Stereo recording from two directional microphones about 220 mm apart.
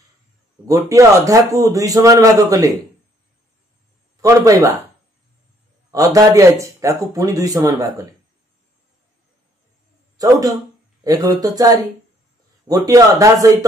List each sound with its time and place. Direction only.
0.7 s a man's voice: 15° right (ahead or behind)
4.2 s a man's voice: 15° right (ahead or behind)
5.9 s a man's voice: 15° right (ahead or behind)
10.1 s a man's voice: 15° right (ahead or behind)